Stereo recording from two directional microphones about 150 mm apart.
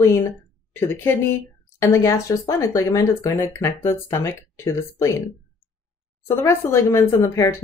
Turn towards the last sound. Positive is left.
turn(degrees=20)  # may be behind; listen again after turning